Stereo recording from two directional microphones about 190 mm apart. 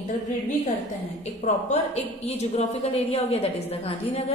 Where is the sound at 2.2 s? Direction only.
35° left (ahead or behind).